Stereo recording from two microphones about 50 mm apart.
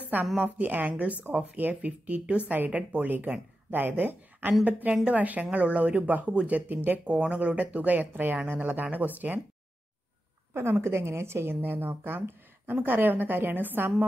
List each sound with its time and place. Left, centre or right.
0.0 s a sound: right
0.4 s a woman's voice: right
10.5 s a woman's voice: right
11.6 s a woman's voice: right